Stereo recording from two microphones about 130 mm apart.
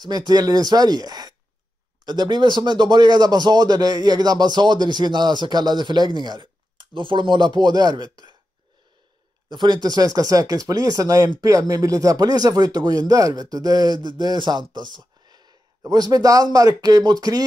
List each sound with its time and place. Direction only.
0.0 s speech: 30° right (ahead or behind)
9.5 s speech: 35° right (ahead or behind)